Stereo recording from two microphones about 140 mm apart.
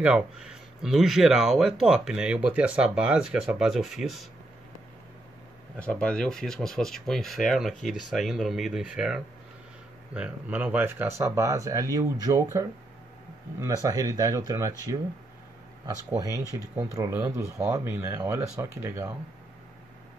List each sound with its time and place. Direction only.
0.0 s speech: 5° right (ahead or behind)
5.8 s speech: 10° left (ahead or behind); by 12.6 s 20° right (ahead or behind)
13.8 s speech: 25° right (ahead or behind)
16.5 s speech: 25° right (ahead or behind)